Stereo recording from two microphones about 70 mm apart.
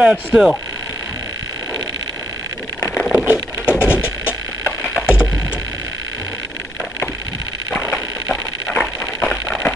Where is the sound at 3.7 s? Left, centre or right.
Left.